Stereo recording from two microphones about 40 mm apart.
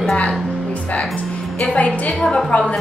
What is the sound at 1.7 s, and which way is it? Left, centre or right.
A woman's voice, left.